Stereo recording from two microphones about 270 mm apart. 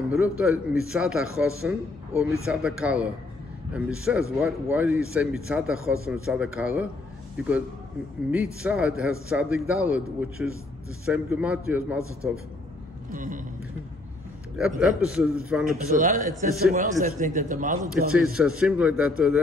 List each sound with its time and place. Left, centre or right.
0.1 s a man's voice: centre
8.6 s a man's voice: centre
13.1 s speech: right
14.8 s a man's voice: centre
15.6 s a man's voice: right
18.1 s a man's voice: centre